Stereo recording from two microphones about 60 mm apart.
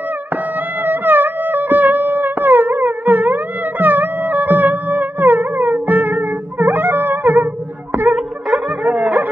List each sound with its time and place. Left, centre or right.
0.8 s music: right
8.1 s music: centre